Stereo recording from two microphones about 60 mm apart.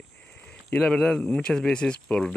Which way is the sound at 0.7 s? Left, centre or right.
Centre.